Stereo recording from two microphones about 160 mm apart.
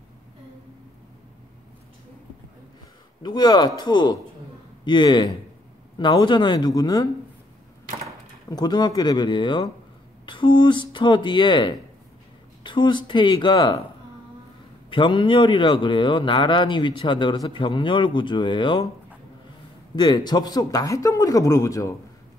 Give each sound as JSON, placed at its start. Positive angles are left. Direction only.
{"t": 3.2, "sound": "speech", "side_deg": 25}
{"t": 8.5, "sound": "speech", "side_deg": 25}
{"t": 14.9, "sound": "speech", "side_deg": 30}
{"t": 20.0, "sound": "speech", "side_deg": 25}